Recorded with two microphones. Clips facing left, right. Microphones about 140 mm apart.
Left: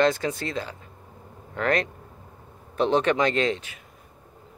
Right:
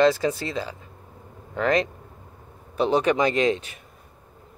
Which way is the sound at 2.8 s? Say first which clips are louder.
Right 1 dB; 10° right (ahead or behind).